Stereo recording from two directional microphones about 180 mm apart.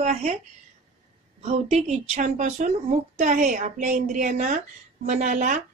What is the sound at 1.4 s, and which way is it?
A woman's voice, 35° right (ahead or behind).